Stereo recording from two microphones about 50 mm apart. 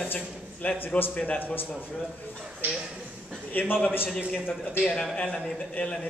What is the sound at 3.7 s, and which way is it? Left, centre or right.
Speech, left.